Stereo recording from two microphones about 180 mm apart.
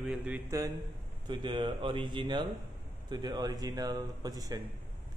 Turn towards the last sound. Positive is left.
turn(degrees=-20)  # may be behind; listen again after turning